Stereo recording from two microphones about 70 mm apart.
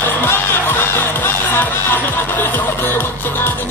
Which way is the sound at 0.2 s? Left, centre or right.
Left.